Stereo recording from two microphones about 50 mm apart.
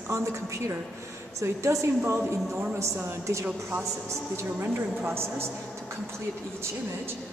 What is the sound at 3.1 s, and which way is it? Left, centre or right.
Speech, right.